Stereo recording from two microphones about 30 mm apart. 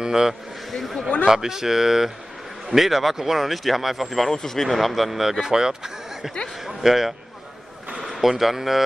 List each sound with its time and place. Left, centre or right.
0.0 s a man's voice: right
0.7 s a sound: centre
1.2 s speech: centre
4.3 s speech: centre
4.6 s speech: centre
5.4 s a man's voice: right
6.8 s speech: centre
8.2 s speech: centre